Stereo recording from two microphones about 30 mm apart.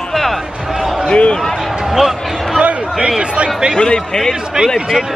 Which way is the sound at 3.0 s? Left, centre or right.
Right.